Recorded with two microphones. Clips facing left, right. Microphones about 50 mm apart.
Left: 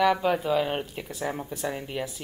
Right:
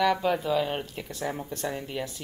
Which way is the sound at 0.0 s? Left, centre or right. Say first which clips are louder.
Left 2 dB; centre.